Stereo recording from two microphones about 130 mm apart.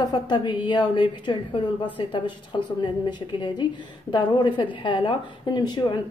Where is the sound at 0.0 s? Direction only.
35° left (ahead or behind).